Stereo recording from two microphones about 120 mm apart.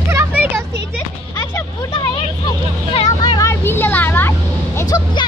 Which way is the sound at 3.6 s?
20° left (ahead or behind).